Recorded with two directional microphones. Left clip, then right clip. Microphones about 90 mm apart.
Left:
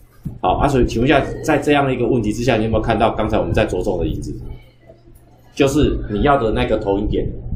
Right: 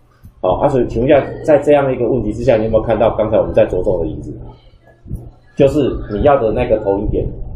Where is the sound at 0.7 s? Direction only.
25° left (ahead or behind).